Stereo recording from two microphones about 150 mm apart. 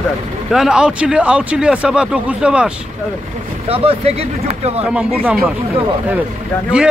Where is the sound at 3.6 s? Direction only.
40° right (ahead or behind).